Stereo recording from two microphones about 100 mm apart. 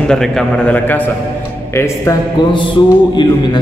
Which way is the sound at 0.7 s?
15° left (ahead or behind).